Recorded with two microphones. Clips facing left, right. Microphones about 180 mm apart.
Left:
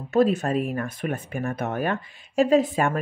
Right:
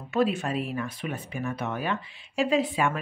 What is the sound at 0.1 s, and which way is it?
Speech, 40° left (ahead or behind).